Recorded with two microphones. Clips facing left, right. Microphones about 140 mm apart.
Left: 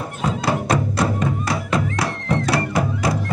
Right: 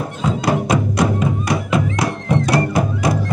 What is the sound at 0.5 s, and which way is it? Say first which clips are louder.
Music: right 3 dB; 10° right (ahead or behind).